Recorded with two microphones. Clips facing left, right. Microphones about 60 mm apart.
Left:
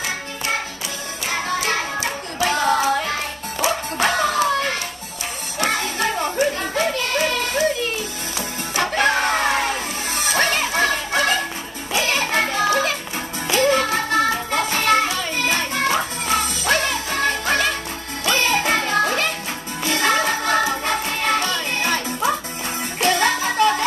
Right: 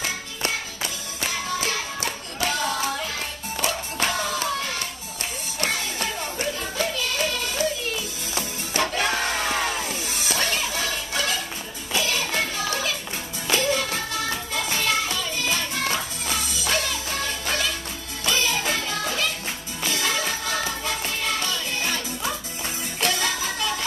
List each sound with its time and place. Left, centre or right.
1.3 s music: left